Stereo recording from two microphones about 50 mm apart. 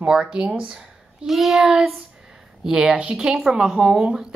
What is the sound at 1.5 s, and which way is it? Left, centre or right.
Speech, centre.